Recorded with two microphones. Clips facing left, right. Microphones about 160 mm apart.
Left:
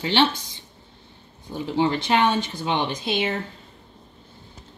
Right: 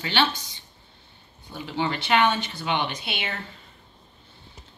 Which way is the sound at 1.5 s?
30° left (ahead or behind).